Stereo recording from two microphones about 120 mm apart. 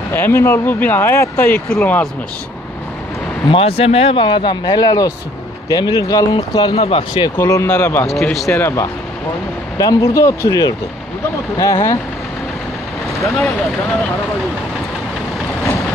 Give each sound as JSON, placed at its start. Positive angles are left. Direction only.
{"t": 0.1, "sound": "speech", "side_deg": 20}
{"t": 3.4, "sound": "a man's voice", "side_deg": 50}
{"t": 6.7, "sound": "speech", "side_deg": 55}
{"t": 7.3, "sound": "speech", "side_deg": 25}
{"t": 7.6, "sound": "speech", "side_deg": 15}
{"t": 8.1, "sound": "speech", "side_deg": 0}
{"t": 8.5, "sound": "speech", "side_deg": 20}